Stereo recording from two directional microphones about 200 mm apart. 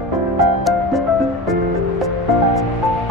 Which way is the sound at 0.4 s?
Centre (ahead or behind).